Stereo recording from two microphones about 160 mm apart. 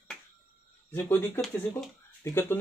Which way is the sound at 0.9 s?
15° left (ahead or behind).